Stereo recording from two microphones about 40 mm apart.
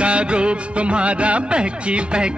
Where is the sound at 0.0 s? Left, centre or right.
Right.